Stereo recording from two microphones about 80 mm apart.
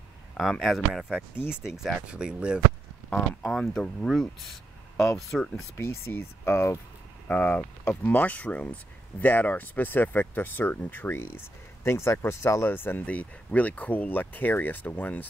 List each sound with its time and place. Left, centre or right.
0.3 s speech: centre
3.1 s speech: centre
5.8 s speech: left